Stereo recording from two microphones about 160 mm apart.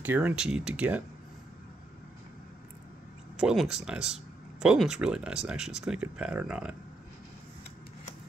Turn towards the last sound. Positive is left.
turn(degrees=-5)  # may be behind; listen again after turning